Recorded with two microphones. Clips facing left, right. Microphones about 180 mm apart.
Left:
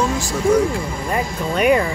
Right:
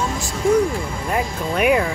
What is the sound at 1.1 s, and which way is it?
Speech, 5° right (ahead or behind).